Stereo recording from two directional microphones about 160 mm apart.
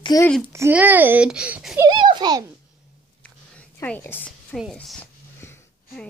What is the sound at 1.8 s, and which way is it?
Speech, 25° right (ahead or behind).